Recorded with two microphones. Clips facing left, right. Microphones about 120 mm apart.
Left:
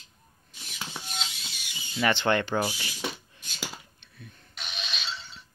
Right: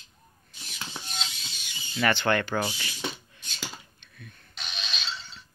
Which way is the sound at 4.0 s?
25° left (ahead or behind).